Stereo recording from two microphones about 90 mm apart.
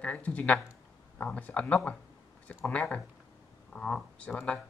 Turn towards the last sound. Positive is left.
turn(degrees=10)  # may be behind; listen again after turning